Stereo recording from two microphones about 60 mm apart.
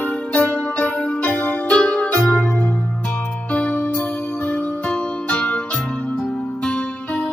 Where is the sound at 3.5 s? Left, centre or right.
Left.